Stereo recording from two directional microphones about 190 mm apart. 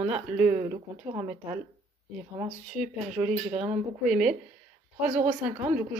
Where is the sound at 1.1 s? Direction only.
20° right (ahead or behind).